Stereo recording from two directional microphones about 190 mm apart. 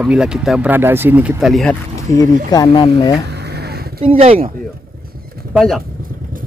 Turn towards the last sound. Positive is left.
turn(degrees=0)  # may be behind; listen again after turning